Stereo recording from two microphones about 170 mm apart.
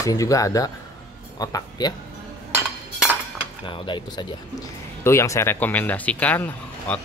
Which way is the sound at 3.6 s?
30° left (ahead or behind).